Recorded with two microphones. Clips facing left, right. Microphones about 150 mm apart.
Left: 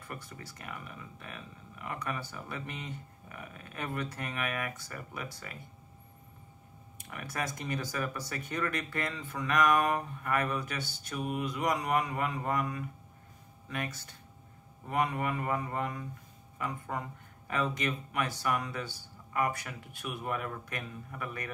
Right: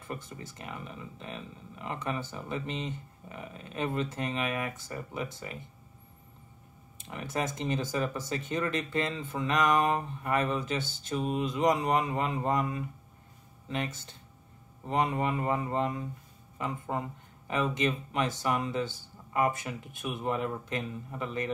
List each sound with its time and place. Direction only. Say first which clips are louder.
0.0 s speech: right 4 dB; 20° right (ahead or behind)
7.0 s speech: right 4 dB; 25° right (ahead or behind)